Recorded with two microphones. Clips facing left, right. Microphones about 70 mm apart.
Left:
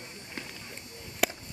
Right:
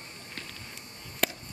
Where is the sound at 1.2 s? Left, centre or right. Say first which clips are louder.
Left 1 dB; centre.